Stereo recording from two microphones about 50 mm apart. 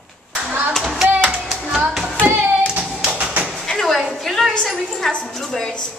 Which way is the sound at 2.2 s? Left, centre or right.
Right.